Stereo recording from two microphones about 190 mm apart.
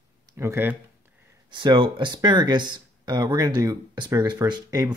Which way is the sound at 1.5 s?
25° right (ahead or behind).